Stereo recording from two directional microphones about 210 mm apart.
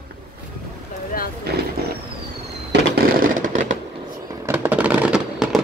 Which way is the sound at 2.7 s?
45° right (ahead or behind).